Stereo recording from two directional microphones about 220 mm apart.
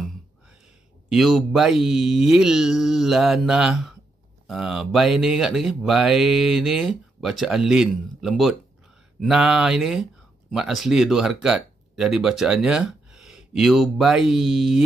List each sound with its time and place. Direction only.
1.0 s speech: centre (ahead or behind)